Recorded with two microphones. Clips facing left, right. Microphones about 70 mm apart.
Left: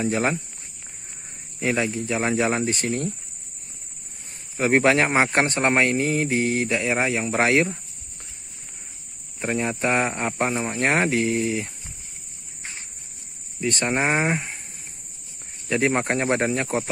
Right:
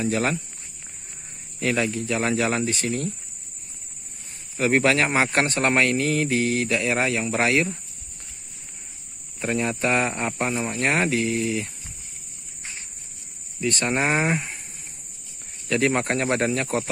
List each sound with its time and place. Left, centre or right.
0.0 s speech: left
1.6 s speech: centre
2.7 s speech: left
4.6 s speech: left
9.4 s speech: left
13.6 s speech: left
14.1 s speech: centre
15.7 s speech: left